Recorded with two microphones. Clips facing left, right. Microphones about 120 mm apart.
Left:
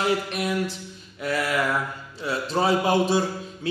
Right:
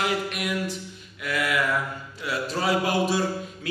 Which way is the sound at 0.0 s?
30° left (ahead or behind).